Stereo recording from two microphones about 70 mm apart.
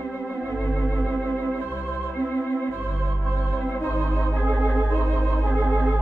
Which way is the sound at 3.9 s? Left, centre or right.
Right.